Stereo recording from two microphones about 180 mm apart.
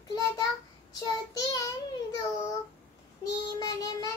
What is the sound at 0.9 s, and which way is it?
Child singing, 20° left (ahead or behind).